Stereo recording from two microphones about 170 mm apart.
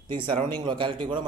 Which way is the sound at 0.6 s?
30° right (ahead or behind).